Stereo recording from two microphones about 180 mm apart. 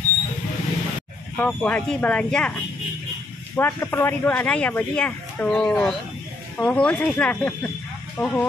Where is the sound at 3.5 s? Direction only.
15° left (ahead or behind).